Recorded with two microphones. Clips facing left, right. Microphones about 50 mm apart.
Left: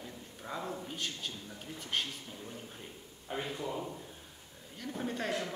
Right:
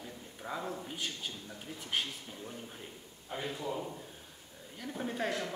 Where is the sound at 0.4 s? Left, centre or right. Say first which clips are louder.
Right 1 dB; centre.